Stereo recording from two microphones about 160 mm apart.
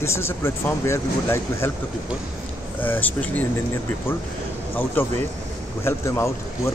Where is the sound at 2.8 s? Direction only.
10° left (ahead or behind).